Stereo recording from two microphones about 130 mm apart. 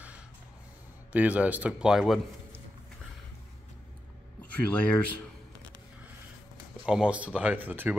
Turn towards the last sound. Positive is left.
turn(degrees=-15)  # may be behind; listen again after turning